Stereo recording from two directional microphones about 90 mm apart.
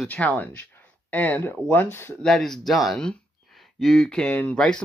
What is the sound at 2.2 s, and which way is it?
Speech, 5° left (ahead or behind).